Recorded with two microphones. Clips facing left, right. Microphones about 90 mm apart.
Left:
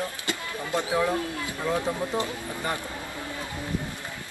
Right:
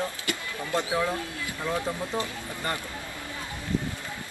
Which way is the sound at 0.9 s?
20° left (ahead or behind).